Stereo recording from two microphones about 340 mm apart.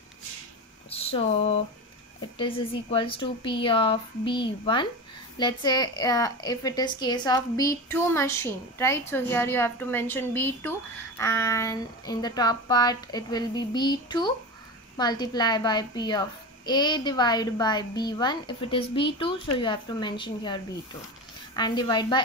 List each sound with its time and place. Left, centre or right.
0.8 s speech: centre